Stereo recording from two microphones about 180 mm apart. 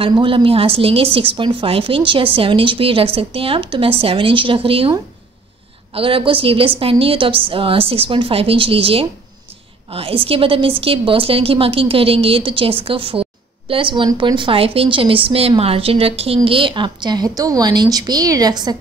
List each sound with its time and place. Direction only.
0.0 s a woman's voice: 30° right (ahead or behind)